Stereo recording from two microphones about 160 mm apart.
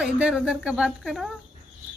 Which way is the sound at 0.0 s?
5° right (ahead or behind).